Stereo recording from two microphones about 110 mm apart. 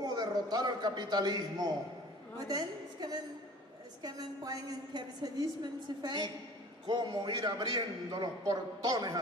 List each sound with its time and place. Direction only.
0.0 s a man's voice: 40° right (ahead or behind)